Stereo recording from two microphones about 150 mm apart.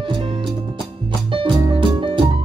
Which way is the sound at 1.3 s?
35° right (ahead or behind).